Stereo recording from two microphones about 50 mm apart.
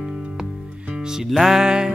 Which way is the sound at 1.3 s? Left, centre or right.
Centre.